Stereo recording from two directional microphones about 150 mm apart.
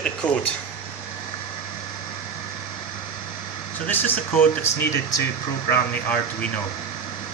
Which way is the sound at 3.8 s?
10° left (ahead or behind).